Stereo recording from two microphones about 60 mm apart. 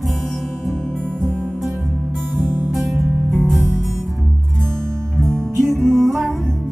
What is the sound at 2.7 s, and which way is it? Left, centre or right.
Music, centre.